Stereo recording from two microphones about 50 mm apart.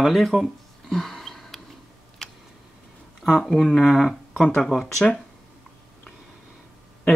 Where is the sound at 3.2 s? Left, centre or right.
Centre.